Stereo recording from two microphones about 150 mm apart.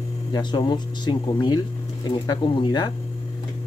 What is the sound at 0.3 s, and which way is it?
Speech, 30° left (ahead or behind).